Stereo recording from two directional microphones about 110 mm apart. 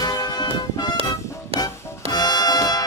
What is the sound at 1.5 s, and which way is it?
Music, 60° right (ahead or behind).